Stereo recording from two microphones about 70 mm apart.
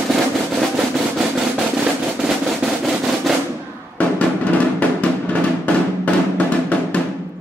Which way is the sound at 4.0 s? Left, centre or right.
Centre.